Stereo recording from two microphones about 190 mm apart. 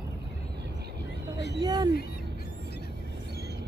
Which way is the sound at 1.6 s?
20° right (ahead or behind).